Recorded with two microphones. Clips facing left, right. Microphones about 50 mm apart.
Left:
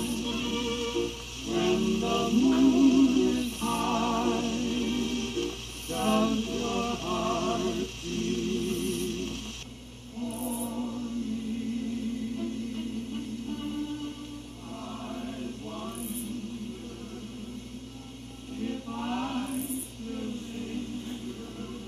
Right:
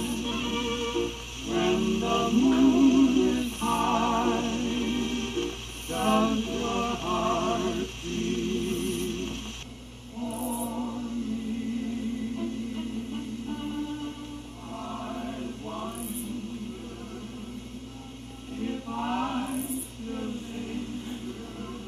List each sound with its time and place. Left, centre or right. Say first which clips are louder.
0.0 s music: right 1 dB; right
10.2 s choir: right 2 dB; right
10.7 s music: right 1 dB; right
12.4 s music: right 1 dB; centre
14.8 s chant: right 3 dB; centre
18.6 s music: right 2 dB; centre